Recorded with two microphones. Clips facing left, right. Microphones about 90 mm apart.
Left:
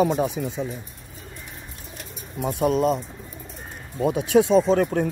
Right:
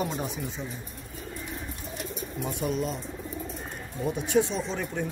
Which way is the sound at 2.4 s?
65° left (ahead or behind).